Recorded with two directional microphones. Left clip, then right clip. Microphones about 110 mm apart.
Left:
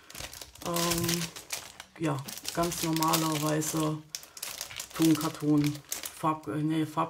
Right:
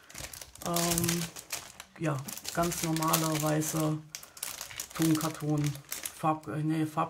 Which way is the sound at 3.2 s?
20° left (ahead or behind).